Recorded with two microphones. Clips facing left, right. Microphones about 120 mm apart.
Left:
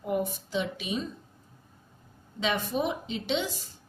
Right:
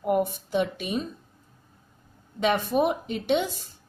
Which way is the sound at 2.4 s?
55° right (ahead or behind).